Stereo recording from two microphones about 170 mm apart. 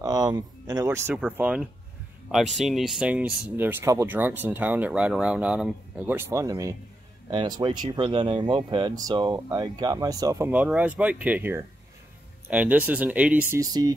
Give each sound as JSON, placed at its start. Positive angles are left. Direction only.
{"t": 0.0, "sound": "speech", "side_deg": -25}